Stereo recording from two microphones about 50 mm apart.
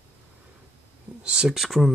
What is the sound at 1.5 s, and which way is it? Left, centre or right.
Speech, centre.